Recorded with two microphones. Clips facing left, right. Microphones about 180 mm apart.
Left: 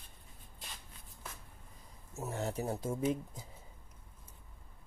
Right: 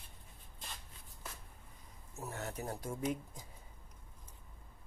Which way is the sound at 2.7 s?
25° left (ahead or behind).